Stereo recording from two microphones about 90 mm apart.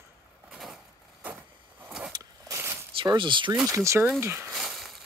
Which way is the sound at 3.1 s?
65° right (ahead or behind).